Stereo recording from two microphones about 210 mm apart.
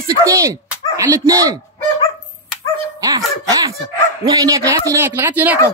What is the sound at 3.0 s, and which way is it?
Laughter, 15° right (ahead or behind).